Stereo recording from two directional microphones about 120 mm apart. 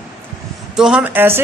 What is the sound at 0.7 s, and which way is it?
Speech, 5° right (ahead or behind).